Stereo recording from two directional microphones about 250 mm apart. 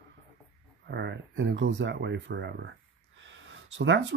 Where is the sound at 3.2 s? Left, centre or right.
Right.